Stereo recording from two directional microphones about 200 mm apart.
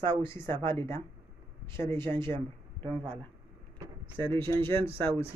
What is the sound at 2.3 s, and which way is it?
Speech, 25° right (ahead or behind).